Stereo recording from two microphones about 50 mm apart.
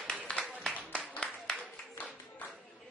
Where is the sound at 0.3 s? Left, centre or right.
Centre.